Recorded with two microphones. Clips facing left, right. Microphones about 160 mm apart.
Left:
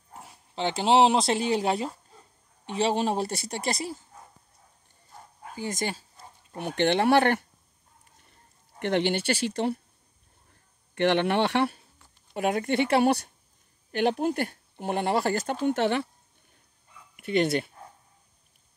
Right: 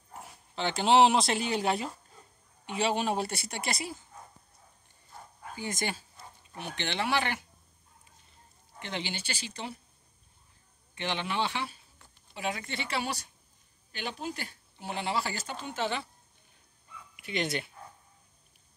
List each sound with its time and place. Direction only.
0.2 s a woman's voice: 30° left (ahead or behind)
5.6 s a woman's voice: 35° left (ahead or behind)
6.5 s speech: 50° left (ahead or behind)
8.2 s a sound: 60° left (ahead or behind)
11.0 s speech: 65° left (ahead or behind)
12.4 s speech: 50° left (ahead or behind)
17.1 s speech: 50° left (ahead or behind)